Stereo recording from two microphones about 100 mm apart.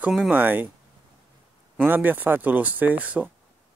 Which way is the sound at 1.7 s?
20° right (ahead or behind).